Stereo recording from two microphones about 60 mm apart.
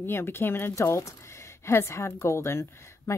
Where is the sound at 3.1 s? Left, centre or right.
Left.